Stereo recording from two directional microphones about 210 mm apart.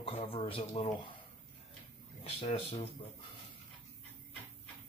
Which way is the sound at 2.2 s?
30° left (ahead or behind).